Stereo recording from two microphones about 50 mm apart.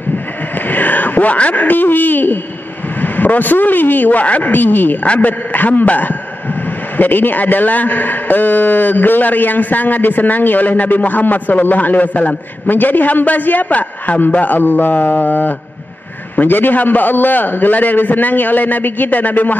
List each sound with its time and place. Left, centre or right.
0.7 s a man's voice: left